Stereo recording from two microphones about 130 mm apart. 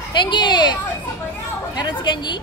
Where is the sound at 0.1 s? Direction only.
35° left (ahead or behind).